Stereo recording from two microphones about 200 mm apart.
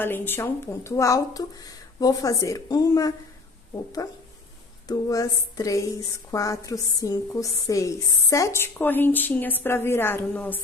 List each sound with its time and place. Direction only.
0.0 s a woman's voice: 10° left (ahead or behind)
4.8 s a woman's voice: 15° left (ahead or behind)